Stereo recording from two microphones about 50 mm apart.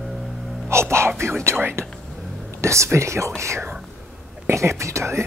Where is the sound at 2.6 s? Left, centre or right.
Right.